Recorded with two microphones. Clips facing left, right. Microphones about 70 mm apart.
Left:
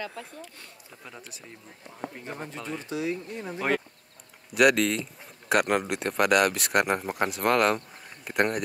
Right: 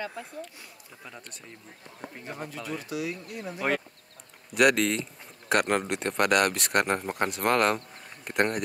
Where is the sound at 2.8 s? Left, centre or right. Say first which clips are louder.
Left 3 dB; left.